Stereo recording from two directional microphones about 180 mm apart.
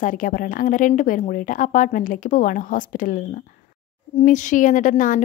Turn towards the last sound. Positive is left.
turn(degrees=45)  # may be behind; listen again after turning